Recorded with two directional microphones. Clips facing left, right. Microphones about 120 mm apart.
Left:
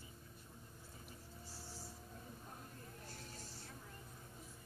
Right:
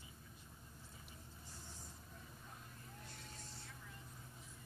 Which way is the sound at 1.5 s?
35° left (ahead or behind).